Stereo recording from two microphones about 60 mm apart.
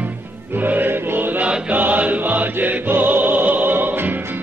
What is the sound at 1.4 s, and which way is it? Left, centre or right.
Music, right.